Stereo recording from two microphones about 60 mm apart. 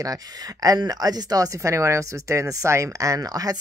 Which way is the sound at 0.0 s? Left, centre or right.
Right.